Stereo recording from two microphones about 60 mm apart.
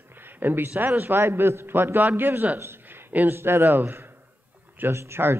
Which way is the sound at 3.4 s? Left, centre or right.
Right.